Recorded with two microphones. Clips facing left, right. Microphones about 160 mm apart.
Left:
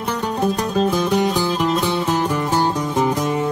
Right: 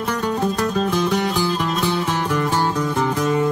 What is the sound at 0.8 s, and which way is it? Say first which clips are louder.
Music: left 2 dB; 20° left (ahead or behind).